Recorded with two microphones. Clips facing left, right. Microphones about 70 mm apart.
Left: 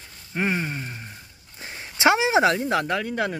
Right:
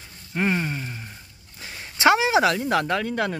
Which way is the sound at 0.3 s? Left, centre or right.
Centre.